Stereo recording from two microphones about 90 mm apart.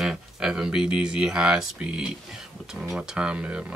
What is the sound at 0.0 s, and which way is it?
Speech, 5° right (ahead or behind).